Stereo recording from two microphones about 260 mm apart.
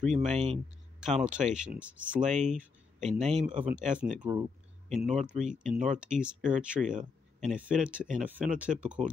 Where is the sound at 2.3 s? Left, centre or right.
Right.